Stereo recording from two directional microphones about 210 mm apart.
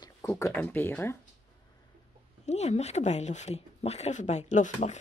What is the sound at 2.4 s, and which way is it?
Speech, 30° left (ahead or behind).